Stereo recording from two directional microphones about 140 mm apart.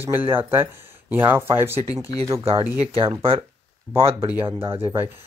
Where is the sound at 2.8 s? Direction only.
45° right (ahead or behind).